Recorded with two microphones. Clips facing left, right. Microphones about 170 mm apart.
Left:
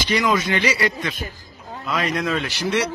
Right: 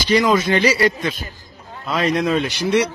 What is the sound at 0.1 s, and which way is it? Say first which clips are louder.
Speech: right 5 dB; 30° right (ahead or behind).